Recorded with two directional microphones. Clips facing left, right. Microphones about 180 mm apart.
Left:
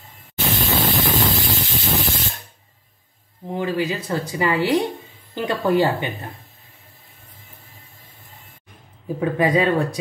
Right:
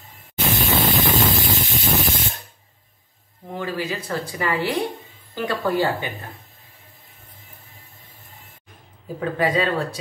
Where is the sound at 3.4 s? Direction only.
20° left (ahead or behind).